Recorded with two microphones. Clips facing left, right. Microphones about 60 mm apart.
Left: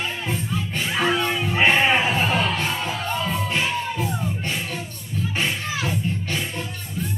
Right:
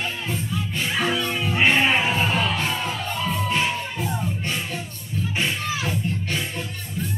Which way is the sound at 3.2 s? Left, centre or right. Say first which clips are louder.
Right 4 dB; centre.